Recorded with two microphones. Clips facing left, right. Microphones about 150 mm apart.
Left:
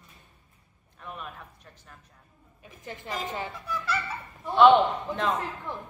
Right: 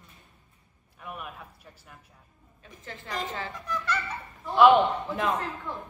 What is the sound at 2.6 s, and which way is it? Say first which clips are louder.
Speech: left 2 dB; 15° left (ahead or behind).